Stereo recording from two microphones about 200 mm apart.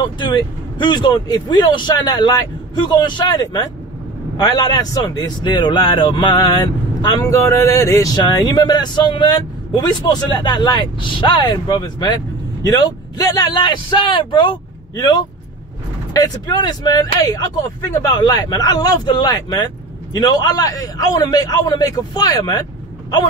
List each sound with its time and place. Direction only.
0.0 s speech: 20° left (ahead or behind)